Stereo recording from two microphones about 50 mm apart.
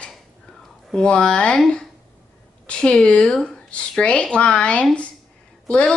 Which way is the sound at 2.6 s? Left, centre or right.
Centre.